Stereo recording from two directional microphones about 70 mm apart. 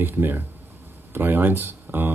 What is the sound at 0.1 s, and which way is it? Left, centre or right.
Speech, right.